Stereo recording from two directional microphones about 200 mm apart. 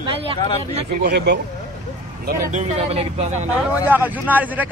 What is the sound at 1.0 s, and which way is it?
Speech, 55° right (ahead or behind).